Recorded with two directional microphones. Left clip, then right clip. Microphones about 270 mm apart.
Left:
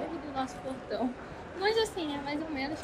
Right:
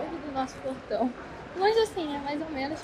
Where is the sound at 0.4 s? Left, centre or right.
Centre.